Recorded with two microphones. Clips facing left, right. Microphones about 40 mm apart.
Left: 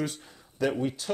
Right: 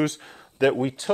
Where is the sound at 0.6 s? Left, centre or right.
Right.